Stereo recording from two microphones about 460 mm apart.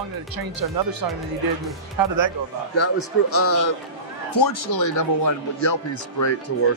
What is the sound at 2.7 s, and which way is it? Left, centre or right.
Speech, left.